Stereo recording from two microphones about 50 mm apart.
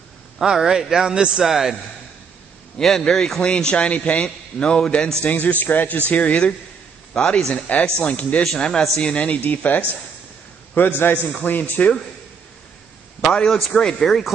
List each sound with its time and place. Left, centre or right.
0.4 s a man's voice: centre
1.4 s a man's voice: centre
3.0 s a man's voice: centre
5.3 s speech: left
7.2 s a man's voice: centre; by 9.8 s left
10.7 s a man's voice: left
13.3 s speech: centre